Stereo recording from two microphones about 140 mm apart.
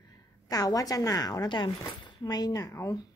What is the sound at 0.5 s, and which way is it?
A woman's voice, 25° left (ahead or behind).